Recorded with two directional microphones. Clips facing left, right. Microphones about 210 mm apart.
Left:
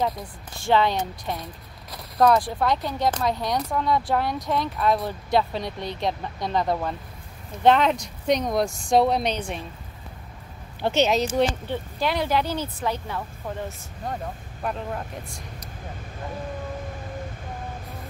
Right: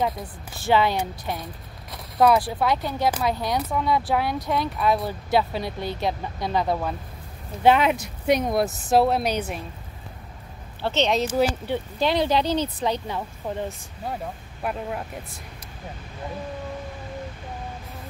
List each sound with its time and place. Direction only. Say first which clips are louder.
0.7 s speech: even; 5° right (ahead or behind)
10.8 s speech: left 2 dB; 15° left (ahead or behind)
11.2 s speech: right 1 dB; 10° right (ahead or behind)
12.0 s speech: right 2 dB; 25° right (ahead or behind)
14.6 s speech: right 1 dB; 5° right (ahead or behind)